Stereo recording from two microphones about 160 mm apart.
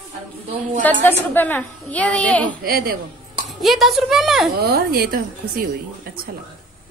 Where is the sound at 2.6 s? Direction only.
65° right (ahead or behind).